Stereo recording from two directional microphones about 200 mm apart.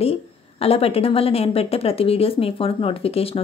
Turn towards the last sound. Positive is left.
turn(degrees=30)  # may be behind; listen again after turning